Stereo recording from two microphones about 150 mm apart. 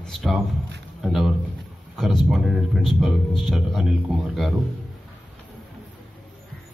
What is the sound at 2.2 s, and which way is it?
A man's voice, centre (ahead or behind).